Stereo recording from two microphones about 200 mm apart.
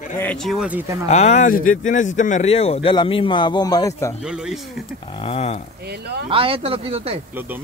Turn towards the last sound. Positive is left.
turn(degrees=-30)  # may be behind; listen again after turning